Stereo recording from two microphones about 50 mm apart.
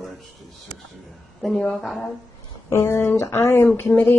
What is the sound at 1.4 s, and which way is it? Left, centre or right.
Speech, centre.